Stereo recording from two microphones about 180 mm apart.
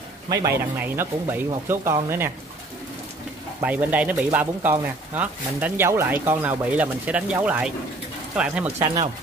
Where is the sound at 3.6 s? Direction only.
10° right (ahead or behind).